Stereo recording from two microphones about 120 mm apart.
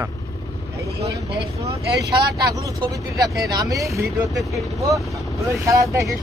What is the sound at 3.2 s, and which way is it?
Speech, 30° right (ahead or behind).